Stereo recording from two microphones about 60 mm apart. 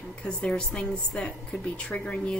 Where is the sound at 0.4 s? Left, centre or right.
Centre.